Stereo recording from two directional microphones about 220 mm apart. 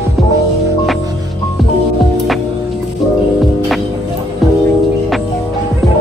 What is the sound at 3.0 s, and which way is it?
Music, centre (ahead or behind).